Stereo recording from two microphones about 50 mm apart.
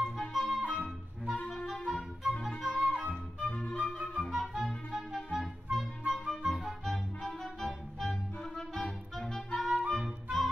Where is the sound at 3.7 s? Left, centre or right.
Right.